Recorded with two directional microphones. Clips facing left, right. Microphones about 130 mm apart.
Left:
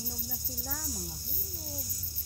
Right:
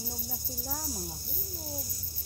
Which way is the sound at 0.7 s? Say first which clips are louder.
Right 3 dB; 30° right (ahead or behind).